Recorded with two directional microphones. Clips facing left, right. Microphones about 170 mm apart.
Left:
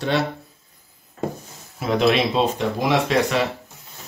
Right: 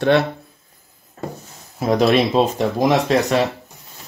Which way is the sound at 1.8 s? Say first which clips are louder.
Right 3 dB; 40° right (ahead or behind).